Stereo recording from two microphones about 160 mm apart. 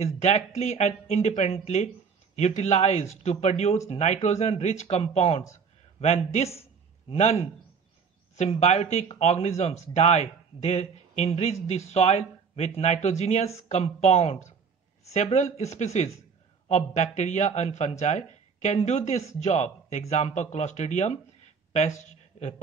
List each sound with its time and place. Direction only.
0.0 s a man's voice: 45° left (ahead or behind)